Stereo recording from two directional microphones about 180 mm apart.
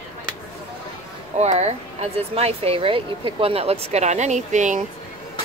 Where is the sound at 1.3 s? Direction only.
40° right (ahead or behind).